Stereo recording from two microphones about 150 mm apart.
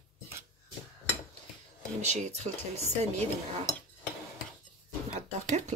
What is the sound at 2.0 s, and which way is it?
Speech, 50° right (ahead or behind).